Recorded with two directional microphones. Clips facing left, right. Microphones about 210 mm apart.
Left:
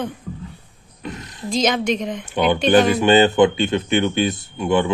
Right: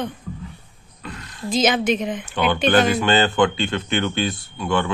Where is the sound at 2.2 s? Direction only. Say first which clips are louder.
Left 4 dB; 20° left (ahead or behind).